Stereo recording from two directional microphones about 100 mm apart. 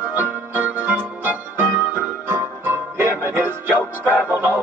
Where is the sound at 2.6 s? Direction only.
20° right (ahead or behind).